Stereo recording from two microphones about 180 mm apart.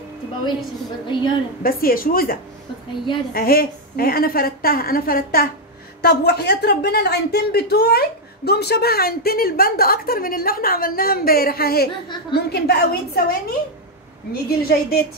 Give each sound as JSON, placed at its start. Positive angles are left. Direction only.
{"t": 1.0, "sound": "a woman's voice", "side_deg": 25}
{"t": 1.6, "sound": "a woman's voice", "side_deg": 55}
{"t": 3.3, "sound": "a woman's voice", "side_deg": 55}